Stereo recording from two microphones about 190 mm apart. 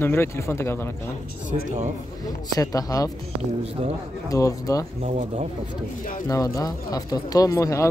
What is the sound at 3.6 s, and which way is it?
Speech, 30° right (ahead or behind).